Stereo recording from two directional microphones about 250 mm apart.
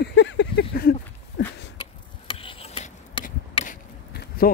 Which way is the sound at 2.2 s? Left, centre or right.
Left.